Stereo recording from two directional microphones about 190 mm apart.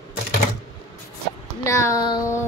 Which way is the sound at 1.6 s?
15° left (ahead or behind).